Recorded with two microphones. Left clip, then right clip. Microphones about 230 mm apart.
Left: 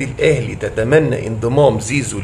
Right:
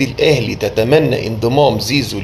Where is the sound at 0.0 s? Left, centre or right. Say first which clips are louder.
Right 2 dB; centre.